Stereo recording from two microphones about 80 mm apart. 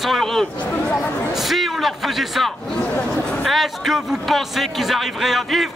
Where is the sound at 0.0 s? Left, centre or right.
Centre.